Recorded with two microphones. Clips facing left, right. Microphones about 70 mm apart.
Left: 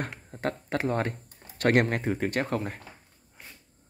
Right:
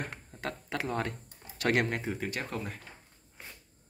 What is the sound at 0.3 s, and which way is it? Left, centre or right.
Speech, left.